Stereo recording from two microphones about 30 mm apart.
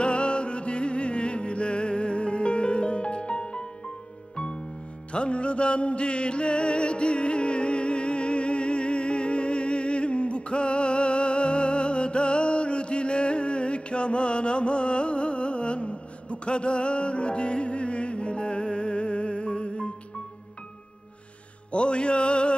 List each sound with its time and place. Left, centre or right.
0.0 s music: left
21.7 s music: left